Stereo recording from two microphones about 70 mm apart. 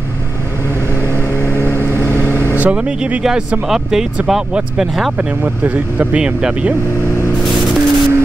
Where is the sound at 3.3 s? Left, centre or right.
Centre.